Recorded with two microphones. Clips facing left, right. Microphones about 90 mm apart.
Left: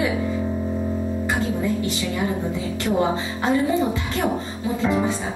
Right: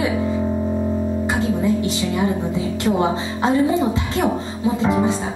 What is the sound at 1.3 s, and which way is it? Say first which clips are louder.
Music: right 4 dB; 20° right (ahead or behind).